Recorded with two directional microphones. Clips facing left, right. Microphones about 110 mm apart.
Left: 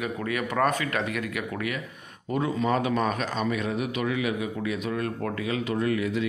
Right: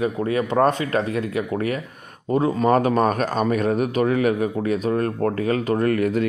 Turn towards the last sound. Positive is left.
turn(degrees=-50)  # may be behind; listen again after turning